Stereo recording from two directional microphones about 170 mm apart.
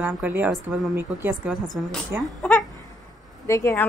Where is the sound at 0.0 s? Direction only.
10° right (ahead or behind).